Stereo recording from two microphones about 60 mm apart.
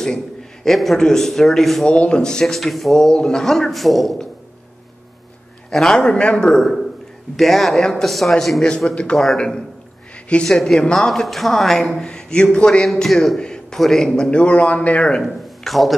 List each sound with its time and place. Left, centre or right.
0.0 s a man's voice: centre
1.9 s speech: centre
3.1 s speech: centre
5.7 s speech: centre
8.6 s speech: centre
10.4 s speech: centre
12.0 s a sound: centre
12.5 s a man's voice: centre
12.8 s a man's voice: centre
15.2 s speech: centre